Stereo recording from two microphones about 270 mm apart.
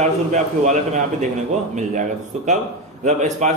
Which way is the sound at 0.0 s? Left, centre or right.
Right.